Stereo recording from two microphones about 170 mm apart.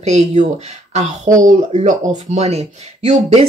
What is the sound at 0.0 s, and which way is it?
Speech, 40° right (ahead or behind).